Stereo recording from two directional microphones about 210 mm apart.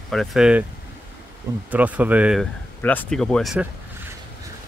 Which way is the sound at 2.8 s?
10° left (ahead or behind).